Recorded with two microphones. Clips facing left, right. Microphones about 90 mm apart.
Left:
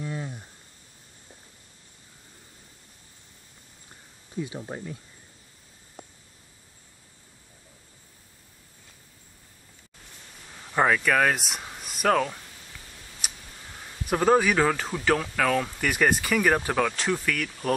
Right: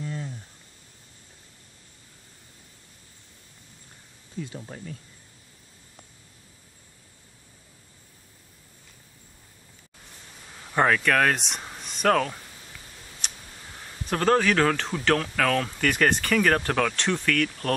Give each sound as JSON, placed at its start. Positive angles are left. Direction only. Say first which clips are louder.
{"t": 0.0, "sound": "a sound", "louder": "left 1 dB", "side_deg": 20}
{"t": 4.6, "sound": "speech", "louder": "left 3 dB", "side_deg": 35}
{"t": 10.7, "sound": "speech", "louder": "right 1 dB", "side_deg": 5}
{"t": 13.2, "sound": "tick", "louder": "even", "side_deg": 5}
{"t": 14.0, "sound": "speech", "louder": "left 1 dB", "side_deg": 10}